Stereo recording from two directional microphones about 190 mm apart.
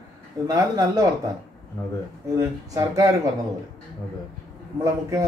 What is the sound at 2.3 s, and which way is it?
Speech, 15° right (ahead or behind).